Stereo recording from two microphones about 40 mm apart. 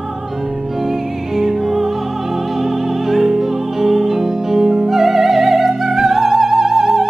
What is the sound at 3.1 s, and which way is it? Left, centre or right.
Music, centre.